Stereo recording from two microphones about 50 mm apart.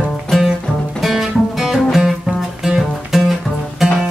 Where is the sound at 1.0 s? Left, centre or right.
Centre.